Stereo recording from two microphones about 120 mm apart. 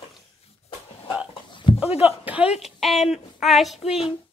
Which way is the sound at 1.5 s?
45° left (ahead or behind).